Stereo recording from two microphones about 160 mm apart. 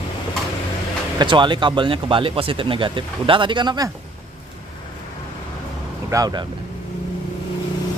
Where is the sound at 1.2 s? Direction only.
30° right (ahead or behind).